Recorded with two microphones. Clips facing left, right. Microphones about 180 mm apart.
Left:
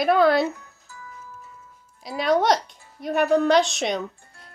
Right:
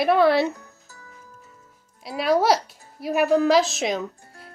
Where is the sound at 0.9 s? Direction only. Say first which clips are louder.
Left 5 dB; 40° right (ahead or behind).